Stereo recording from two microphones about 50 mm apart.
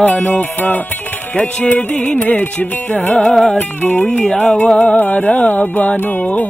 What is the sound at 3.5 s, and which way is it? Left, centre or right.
Music, left.